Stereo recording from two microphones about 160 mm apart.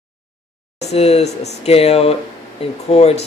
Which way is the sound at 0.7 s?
40° left (ahead or behind).